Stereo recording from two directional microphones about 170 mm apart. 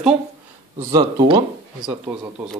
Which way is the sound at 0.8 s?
25° right (ahead or behind).